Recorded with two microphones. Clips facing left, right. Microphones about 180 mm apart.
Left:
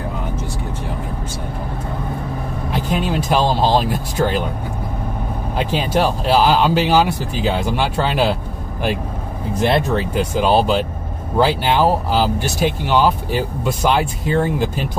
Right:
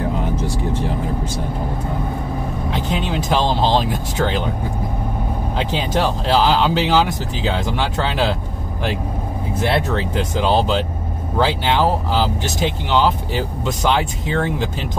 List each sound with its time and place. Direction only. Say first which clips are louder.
3.0 s speech: left 2 dB; 10° left (ahead or behind)
5.9 s speech: left 2 dB; 10° left (ahead or behind)
9.6 s speech: left 3 dB; 15° left (ahead or behind)